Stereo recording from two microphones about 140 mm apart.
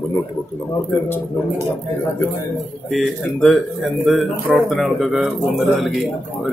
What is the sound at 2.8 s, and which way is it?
Speech, centre (ahead or behind).